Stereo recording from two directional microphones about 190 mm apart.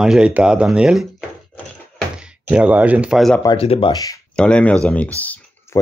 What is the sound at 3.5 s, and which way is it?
Speech, 30° left (ahead or behind).